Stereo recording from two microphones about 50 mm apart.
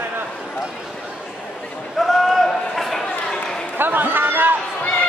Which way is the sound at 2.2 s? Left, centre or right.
Centre.